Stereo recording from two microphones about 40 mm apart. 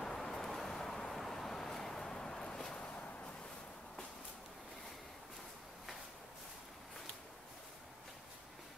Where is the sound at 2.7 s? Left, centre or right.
Left.